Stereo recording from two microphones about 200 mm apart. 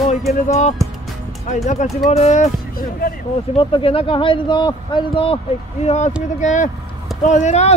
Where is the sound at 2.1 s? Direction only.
35° left (ahead or behind).